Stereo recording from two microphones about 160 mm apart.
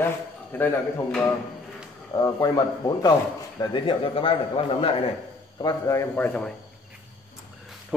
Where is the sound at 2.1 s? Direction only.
20° left (ahead or behind).